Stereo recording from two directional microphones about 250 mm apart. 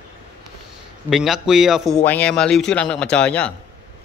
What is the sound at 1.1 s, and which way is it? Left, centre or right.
A man's voice, centre.